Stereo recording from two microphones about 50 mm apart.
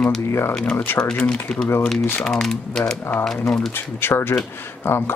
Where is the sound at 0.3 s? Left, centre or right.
Left.